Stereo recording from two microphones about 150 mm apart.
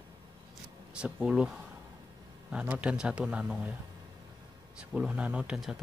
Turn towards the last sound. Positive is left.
turn(degrees=-5)  # may be behind; listen again after turning